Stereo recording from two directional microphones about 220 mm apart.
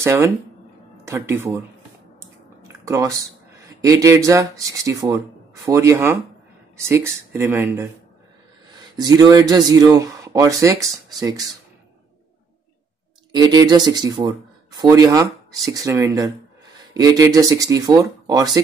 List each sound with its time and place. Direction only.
0.0 s speech: 10° right (ahead or behind)
2.7 s a sound: 15° right (ahead or behind)
3.6 s speech: 15° right (ahead or behind)
13.3 s speech: 20° right (ahead or behind)